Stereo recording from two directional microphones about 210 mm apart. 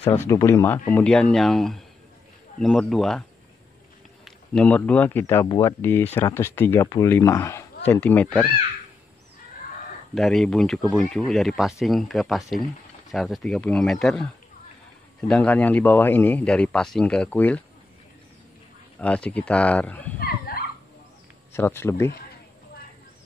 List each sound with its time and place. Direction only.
0.0 s a man's voice: 10° left (ahead or behind)
10.1 s a man's voice: centre (ahead or behind)
18.9 s a man's voice: 5° left (ahead or behind)
20.2 s a sound: 45° left (ahead or behind)
21.5 s a man's voice: 10° left (ahead or behind)